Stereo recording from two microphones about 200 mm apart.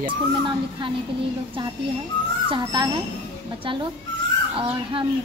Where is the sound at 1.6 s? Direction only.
25° right (ahead or behind).